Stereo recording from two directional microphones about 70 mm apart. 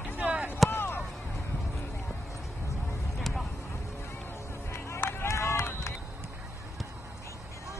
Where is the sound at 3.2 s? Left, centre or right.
Centre.